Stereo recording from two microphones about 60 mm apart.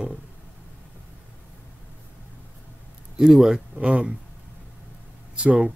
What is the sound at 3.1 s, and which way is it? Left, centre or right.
Speech, centre.